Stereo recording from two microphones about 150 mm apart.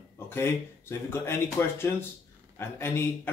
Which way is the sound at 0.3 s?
15° left (ahead or behind).